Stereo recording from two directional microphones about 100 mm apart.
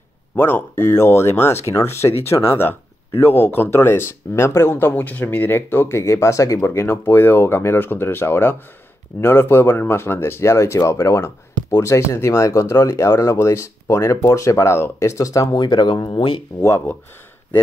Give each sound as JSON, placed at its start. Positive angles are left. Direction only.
{"t": 0.4, "sound": "speech", "side_deg": 20}
{"t": 16.6, "sound": "speech", "side_deg": 30}